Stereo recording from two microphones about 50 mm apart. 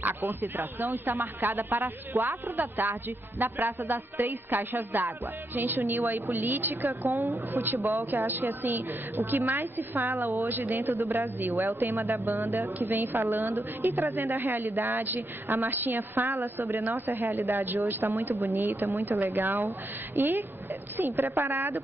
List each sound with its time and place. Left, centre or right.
0.0 s a woman's voice: right
2.2 s speech: right
2.8 s a woman's voice: right
7.1 s speech: right
8.2 s a woman's voice: right
13.9 s speech: right
14.2 s a woman's voice: right